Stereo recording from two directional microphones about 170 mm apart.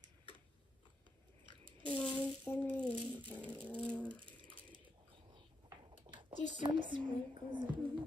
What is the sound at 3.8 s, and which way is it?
Bird, 5° left (ahead or behind).